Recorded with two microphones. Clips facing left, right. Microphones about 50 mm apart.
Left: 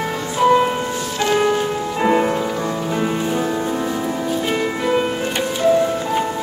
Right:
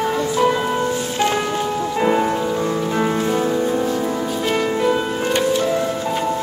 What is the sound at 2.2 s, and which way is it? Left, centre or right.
Music, centre.